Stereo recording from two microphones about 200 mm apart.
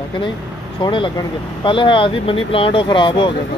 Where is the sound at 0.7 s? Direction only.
25° left (ahead or behind).